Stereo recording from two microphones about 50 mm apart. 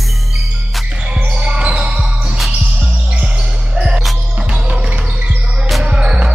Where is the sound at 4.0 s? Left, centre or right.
Centre.